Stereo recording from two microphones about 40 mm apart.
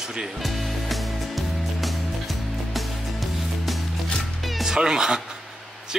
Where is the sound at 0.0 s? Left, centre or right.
Centre.